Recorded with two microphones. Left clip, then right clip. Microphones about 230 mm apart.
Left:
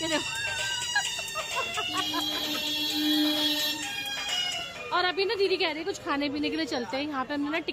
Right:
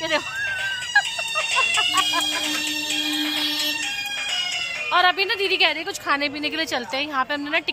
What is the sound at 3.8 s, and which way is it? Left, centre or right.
Music, left.